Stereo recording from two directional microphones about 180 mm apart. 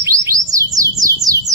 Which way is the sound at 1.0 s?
20° right (ahead or behind).